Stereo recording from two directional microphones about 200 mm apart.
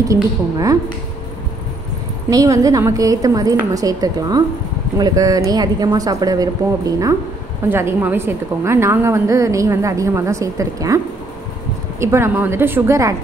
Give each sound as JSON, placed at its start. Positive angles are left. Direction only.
{"t": 0.1, "sound": "a woman's voice", "side_deg": -15}
{"t": 2.2, "sound": "a woman's voice", "side_deg": -15}
{"t": 12.0, "sound": "a woman's voice", "side_deg": -15}